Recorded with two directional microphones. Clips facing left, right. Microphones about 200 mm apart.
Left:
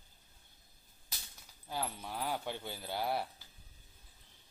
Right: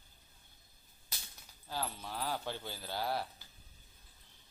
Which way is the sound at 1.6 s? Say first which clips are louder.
Left 1 dB; 20° left (ahead or behind).